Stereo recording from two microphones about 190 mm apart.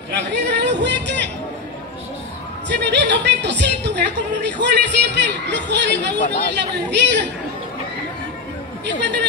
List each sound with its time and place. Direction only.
0.3 s a woman's voice: 65° right (ahead or behind)
2.7 s a woman's voice: 65° right (ahead or behind)
8.8 s speech: 65° right (ahead or behind)